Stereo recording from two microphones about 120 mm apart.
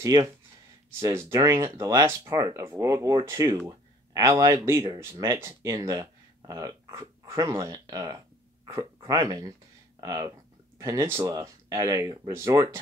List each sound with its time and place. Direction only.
0.0 s speech: 25° right (ahead or behind)